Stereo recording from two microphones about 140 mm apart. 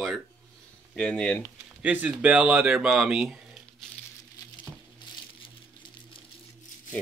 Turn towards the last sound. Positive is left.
turn(degrees=40)  # may be behind; listen again after turning